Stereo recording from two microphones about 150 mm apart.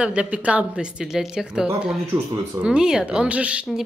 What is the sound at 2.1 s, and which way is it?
Speech, 25° right (ahead or behind).